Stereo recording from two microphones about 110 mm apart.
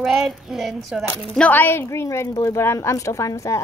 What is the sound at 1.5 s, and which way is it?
A woman's voice, 20° left (ahead or behind).